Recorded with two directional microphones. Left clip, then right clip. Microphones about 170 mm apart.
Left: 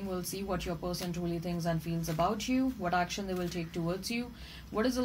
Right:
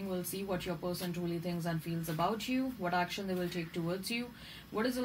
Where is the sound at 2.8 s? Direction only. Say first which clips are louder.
Even; 35° left (ahead or behind).